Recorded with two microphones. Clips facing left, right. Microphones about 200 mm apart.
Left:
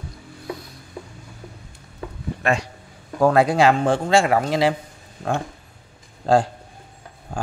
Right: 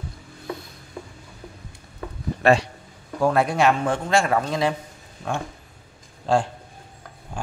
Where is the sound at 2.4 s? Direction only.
30° right (ahead or behind).